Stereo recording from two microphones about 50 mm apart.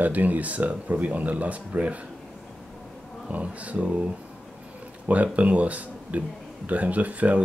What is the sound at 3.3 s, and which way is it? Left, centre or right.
Speech, right.